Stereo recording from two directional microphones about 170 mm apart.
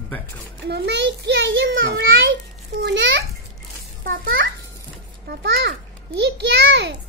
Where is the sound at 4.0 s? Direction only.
90° right.